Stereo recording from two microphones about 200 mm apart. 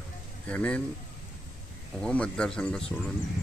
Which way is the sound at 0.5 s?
5° left (ahead or behind).